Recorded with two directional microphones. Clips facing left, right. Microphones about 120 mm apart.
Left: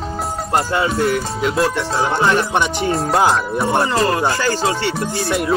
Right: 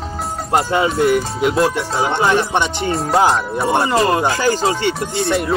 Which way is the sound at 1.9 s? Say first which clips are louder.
Even; centre (ahead or behind).